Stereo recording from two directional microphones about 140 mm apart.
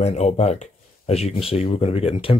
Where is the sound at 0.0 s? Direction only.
50° left (ahead or behind).